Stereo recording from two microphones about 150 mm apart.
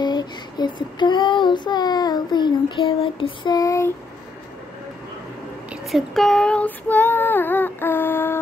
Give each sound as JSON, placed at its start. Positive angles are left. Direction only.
{"t": 0.0, "sound": "child singing", "side_deg": 30}
{"t": 5.7, "sound": "child singing", "side_deg": 0}